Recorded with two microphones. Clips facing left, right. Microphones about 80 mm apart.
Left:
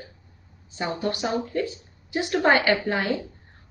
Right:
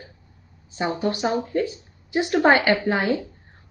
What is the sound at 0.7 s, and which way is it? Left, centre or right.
A woman's voice, centre.